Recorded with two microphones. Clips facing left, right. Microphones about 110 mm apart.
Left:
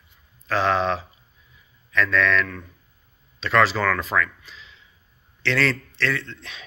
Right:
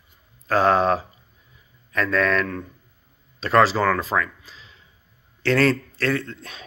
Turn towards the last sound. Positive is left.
turn(degrees=-40)  # may be behind; listen again after turning